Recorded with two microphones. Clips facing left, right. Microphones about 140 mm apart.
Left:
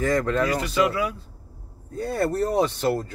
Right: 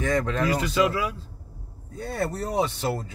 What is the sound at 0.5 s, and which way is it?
Speech, 25° right (ahead or behind).